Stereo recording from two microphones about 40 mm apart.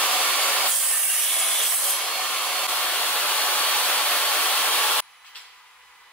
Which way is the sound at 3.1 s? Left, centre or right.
Left.